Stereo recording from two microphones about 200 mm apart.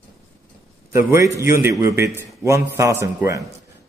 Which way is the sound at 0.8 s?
15° right (ahead or behind).